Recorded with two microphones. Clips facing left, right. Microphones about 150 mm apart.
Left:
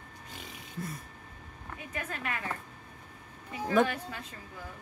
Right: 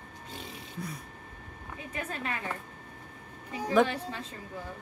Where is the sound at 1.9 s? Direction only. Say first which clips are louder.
Right 2 dB; 30° right (ahead or behind).